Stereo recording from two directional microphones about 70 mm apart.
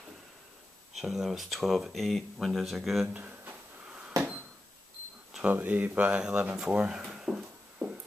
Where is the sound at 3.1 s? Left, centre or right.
Right.